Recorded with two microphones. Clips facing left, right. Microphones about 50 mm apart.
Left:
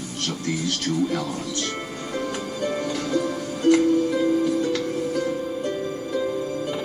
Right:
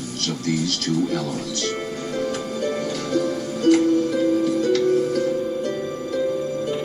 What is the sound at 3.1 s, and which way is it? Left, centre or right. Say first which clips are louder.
Music: right 4 dB; left.